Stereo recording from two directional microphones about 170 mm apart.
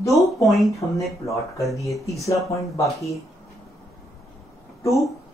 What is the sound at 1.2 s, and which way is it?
Speech, 20° left (ahead or behind).